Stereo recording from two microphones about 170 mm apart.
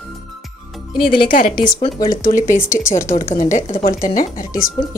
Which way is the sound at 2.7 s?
15° left (ahead or behind).